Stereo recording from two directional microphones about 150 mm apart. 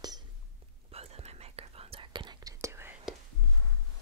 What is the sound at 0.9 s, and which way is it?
Whispering, 40° right (ahead or behind).